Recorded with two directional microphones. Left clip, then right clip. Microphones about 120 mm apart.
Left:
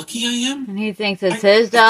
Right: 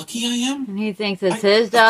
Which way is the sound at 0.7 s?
20° left (ahead or behind).